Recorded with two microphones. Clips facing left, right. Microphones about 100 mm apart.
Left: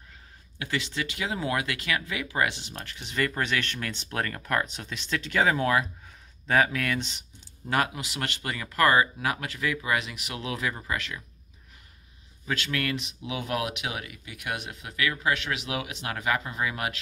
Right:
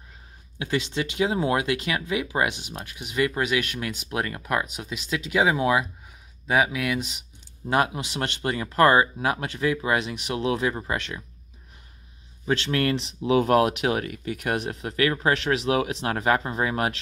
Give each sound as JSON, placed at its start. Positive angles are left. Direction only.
{"t": 0.6, "sound": "speech", "side_deg": -20}
{"t": 7.7, "sound": "speech", "side_deg": -25}
{"t": 12.4, "sound": "speech", "side_deg": -30}